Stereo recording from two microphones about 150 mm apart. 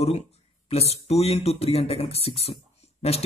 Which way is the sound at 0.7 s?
40° left (ahead or behind).